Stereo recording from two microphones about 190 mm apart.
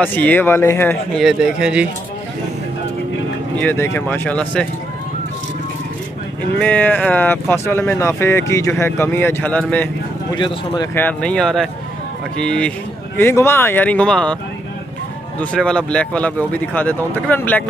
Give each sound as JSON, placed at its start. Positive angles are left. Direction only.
{"t": 0.0, "sound": "speech", "side_deg": 10}
{"t": 1.2, "sound": "speech", "side_deg": -5}
{"t": 3.5, "sound": "speech", "side_deg": 10}
{"t": 6.6, "sound": "speech", "side_deg": 10}
{"t": 10.3, "sound": "speech", "side_deg": 25}
{"t": 11.0, "sound": "speech", "side_deg": 5}
{"t": 15.5, "sound": "speech", "side_deg": 5}